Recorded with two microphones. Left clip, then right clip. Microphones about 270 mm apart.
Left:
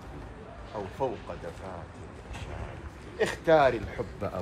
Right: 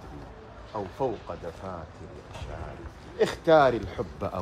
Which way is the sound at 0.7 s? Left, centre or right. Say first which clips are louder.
Right 3 dB; right.